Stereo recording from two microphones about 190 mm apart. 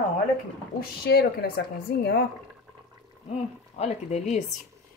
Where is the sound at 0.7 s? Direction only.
55° left (ahead or behind).